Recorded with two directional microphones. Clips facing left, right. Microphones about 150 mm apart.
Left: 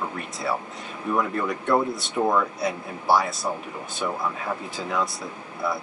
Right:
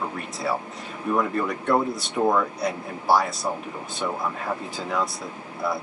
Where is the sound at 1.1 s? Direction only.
Centre (ahead or behind).